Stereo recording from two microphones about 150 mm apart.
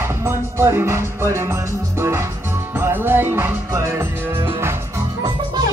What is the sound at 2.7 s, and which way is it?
Music, 15° right (ahead or behind).